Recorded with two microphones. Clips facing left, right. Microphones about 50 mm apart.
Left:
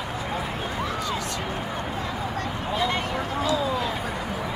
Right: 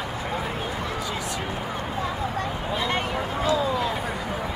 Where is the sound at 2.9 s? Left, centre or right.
Right.